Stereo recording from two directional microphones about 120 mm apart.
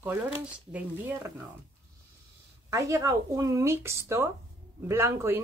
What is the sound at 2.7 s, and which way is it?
Speech, 25° right (ahead or behind).